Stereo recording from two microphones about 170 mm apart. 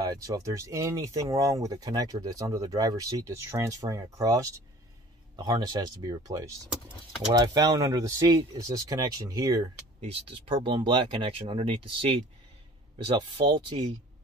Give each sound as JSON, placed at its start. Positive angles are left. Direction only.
{"t": 0.0, "sound": "speech", "side_deg": -20}
{"t": 9.9, "sound": "speech", "side_deg": -35}